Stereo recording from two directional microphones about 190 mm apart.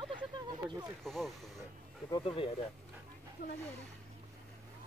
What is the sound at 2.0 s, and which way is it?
Speech, 25° left (ahead or behind).